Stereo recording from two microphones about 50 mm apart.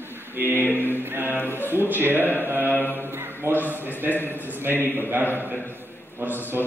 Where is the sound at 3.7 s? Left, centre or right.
Right.